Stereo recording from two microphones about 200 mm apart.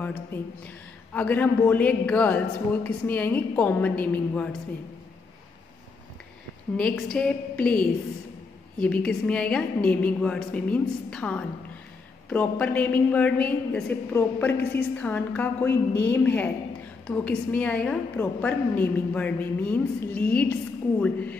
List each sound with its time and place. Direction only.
1.1 s a woman's voice: 10° left (ahead or behind)
6.8 s a woman's voice: 5° left (ahead or behind)